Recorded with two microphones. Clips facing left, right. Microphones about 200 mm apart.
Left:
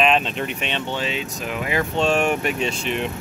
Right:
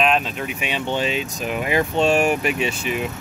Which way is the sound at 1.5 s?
20° right (ahead or behind).